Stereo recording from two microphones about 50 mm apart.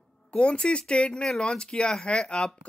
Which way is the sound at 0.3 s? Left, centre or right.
Centre.